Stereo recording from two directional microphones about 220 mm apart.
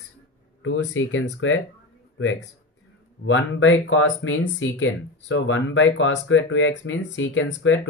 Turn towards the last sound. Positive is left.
turn(degrees=60)  # may be behind; listen again after turning